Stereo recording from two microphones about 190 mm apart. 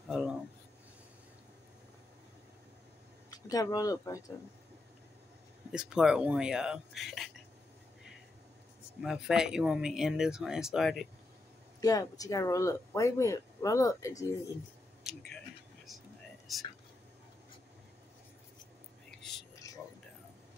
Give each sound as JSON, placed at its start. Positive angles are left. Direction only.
{"t": 0.1, "sound": "a sound", "side_deg": 0}
{"t": 3.3, "sound": "speech", "side_deg": 20}
{"t": 5.7, "sound": "speech", "side_deg": -5}
{"t": 9.0, "sound": "speech", "side_deg": 0}
{"t": 11.8, "sound": "speech", "side_deg": 20}
{"t": 15.9, "sound": "whispering", "side_deg": 0}
{"t": 16.5, "sound": "speech", "side_deg": 0}
{"t": 19.6, "sound": "a sound", "side_deg": 15}